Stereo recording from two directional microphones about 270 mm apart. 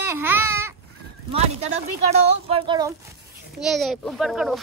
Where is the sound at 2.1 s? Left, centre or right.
Right.